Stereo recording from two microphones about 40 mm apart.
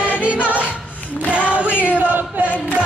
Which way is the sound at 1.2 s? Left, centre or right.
Right.